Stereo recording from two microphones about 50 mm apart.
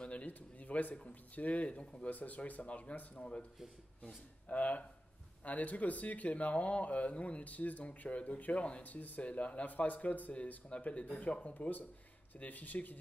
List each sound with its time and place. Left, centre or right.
0.0 s speech: left
2.0 s speech: left
4.5 s speech: left